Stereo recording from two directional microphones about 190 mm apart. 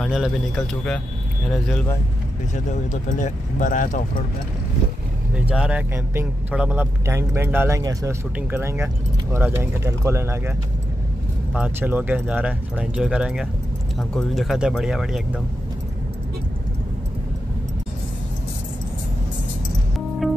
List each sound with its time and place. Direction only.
0.0 s speech: centre (ahead or behind)
2.5 s speech: 40° left (ahead or behind)
5.3 s speech: 5° right (ahead or behind)
11.5 s speech: 10° right (ahead or behind)
20.2 s music: centre (ahead or behind)